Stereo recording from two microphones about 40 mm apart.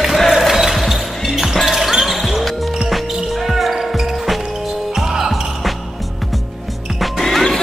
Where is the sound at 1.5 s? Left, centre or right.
Centre.